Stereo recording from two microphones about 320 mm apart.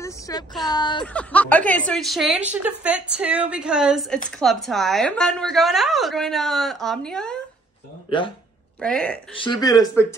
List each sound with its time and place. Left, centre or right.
0.0 s a sound: centre
0.7 s a woman's voice: centre
8.1 s speech: centre
8.8 s a woman's voice: centre